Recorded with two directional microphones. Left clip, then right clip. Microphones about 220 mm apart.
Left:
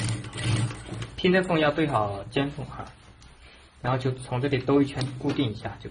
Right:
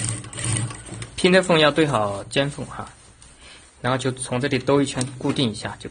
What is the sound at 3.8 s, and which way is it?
Speech, 55° right (ahead or behind).